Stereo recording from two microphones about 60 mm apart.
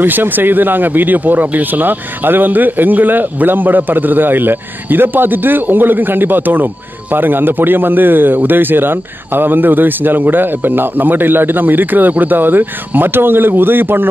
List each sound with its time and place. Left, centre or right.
0.0 s speech: right